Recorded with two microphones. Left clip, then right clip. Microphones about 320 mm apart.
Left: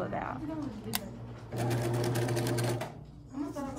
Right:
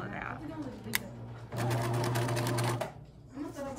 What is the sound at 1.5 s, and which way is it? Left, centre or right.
Sewing machine, centre.